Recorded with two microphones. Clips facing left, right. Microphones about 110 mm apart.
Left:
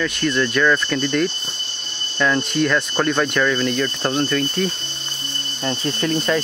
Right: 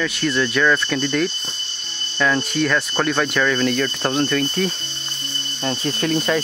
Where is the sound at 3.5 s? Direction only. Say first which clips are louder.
Right 1 dB; 15° left (ahead or behind).